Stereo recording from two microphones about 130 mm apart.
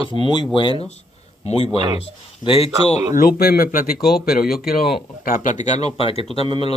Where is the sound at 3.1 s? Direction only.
90° left.